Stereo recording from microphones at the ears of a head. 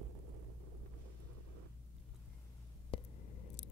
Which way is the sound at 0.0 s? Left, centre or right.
Right.